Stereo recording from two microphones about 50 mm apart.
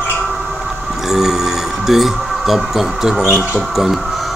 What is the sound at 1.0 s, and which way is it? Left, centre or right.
Speech, centre.